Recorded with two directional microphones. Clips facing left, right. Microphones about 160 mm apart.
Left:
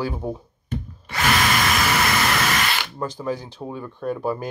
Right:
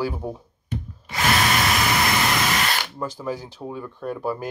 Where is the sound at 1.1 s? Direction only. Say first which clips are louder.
Even; 25° right (ahead or behind).